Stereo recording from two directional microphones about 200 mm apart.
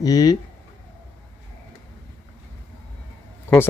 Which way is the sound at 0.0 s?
15° left (ahead or behind).